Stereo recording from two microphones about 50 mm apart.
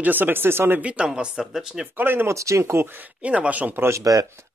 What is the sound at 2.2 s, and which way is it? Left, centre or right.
Speech, right.